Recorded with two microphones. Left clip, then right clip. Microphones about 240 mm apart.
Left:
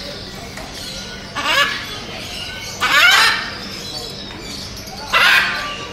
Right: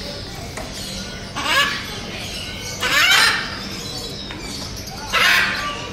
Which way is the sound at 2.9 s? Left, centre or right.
Left.